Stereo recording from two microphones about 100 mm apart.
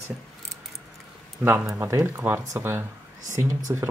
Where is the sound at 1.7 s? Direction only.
30° right (ahead or behind).